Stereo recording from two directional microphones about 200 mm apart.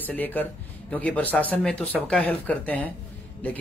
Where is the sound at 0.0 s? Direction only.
10° left (ahead or behind).